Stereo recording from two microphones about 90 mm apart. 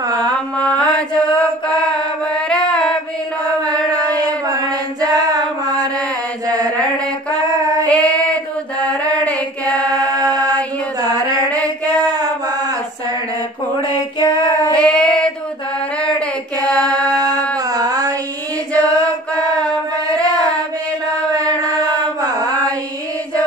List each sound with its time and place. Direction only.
0.6 s mantra: 10° left (ahead or behind)
2.3 s female singing: 10° left (ahead or behind)
4.2 s a sound: 45° right (ahead or behind)
7.8 s child singing: 15° left (ahead or behind)
9.7 s mantra: 40° right (ahead or behind)
14.7 s child singing: 10° left (ahead or behind)
16.6 s a sound: 10° left (ahead or behind)
16.9 s music: 40° right (ahead or behind)
17.7 s a sound: 45° right (ahead or behind)
18.7 s chant: 15° left (ahead or behind)
22.2 s mantra: 40° right (ahead or behind)